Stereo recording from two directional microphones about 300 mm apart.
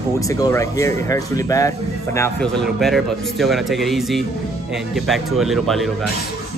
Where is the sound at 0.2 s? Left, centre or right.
Centre.